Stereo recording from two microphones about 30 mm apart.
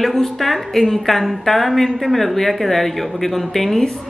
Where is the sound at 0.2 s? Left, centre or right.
Centre.